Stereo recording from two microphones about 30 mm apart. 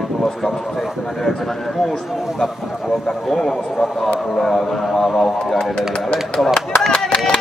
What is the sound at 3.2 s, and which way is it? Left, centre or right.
Speech, centre.